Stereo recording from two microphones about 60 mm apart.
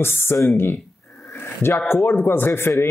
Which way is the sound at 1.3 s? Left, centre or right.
Left.